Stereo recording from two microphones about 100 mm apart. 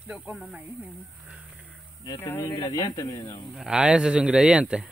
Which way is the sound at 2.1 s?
25° left (ahead or behind).